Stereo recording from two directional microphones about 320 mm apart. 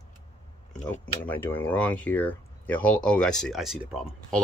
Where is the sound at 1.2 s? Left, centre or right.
Centre.